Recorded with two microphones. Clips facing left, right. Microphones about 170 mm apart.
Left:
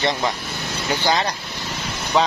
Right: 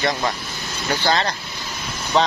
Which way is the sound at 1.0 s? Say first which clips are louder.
Right 1 dB; 10° left (ahead or behind).